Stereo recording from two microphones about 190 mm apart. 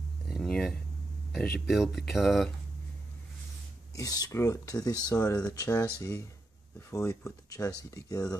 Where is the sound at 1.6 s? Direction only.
Centre (ahead or behind).